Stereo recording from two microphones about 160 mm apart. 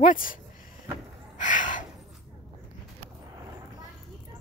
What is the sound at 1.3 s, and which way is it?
Gasp, 50° left (ahead or behind).